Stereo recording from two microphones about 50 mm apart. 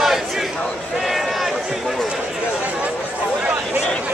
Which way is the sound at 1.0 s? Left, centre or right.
Centre.